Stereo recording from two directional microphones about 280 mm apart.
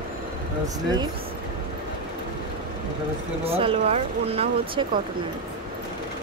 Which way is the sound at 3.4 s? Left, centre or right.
Right.